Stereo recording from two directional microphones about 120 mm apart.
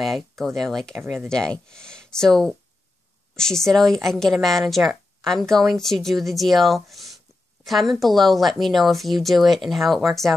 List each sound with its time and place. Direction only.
0.0 s speech: centre (ahead or behind)